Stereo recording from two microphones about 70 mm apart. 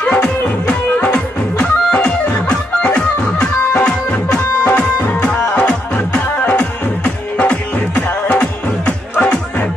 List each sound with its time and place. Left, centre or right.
0.0 s music: left